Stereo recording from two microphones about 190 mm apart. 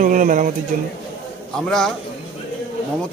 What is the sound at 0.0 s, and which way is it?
Speech, 45° right (ahead or behind).